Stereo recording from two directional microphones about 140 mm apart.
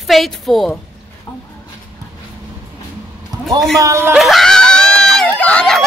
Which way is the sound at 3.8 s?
20° right (ahead or behind).